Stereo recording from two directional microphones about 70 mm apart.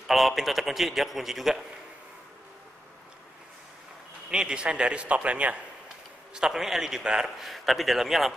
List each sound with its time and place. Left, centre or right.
0.0 s a man's voice: centre
4.3 s a man's voice: centre
6.3 s a man's voice: centre